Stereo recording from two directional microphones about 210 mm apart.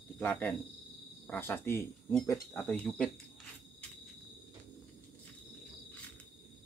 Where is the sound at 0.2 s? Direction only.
10° left (ahead or behind).